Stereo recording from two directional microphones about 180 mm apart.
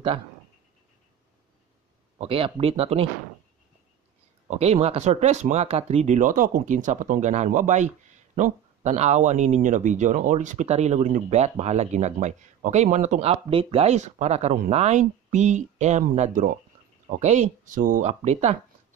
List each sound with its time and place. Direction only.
2.1 s speech: 30° right (ahead or behind)
4.5 s speech: 35° right (ahead or behind)